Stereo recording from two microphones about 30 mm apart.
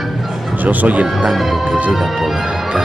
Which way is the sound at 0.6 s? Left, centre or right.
Right.